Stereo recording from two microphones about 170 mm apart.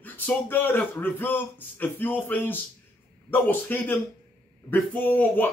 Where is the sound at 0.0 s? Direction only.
10° left (ahead or behind).